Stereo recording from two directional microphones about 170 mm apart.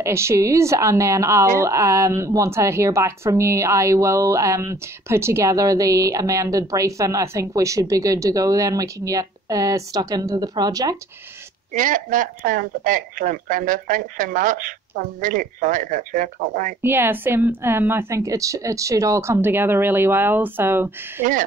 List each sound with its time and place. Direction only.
0.0 s a woman's voice: 15° right (ahead or behind)
11.8 s speech: 50° right (ahead or behind)
16.8 s a woman's voice: 15° right (ahead or behind)
21.2 s speech: 50° right (ahead or behind)